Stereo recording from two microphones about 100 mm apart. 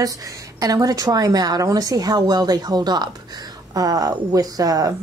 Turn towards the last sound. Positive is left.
turn(degrees=-35)  # may be behind; listen again after turning